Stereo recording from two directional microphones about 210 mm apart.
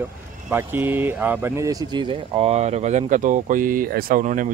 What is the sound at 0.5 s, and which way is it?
Speech, 10° right (ahead or behind).